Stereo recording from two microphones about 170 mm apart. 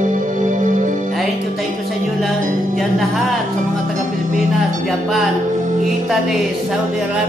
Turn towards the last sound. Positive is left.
turn(degrees=0)  # may be behind; listen again after turning